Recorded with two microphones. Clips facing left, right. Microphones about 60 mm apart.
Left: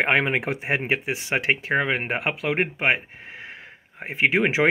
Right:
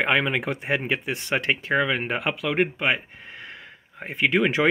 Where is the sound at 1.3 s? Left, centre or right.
Left.